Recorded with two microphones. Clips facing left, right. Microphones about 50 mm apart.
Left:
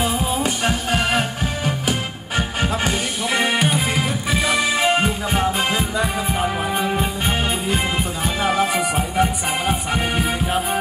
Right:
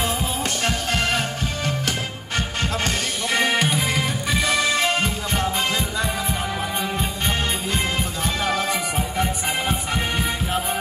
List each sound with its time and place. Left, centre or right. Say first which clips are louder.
0.0 s music: left 4 dB; centre
8.4 s music: left 5 dB; centre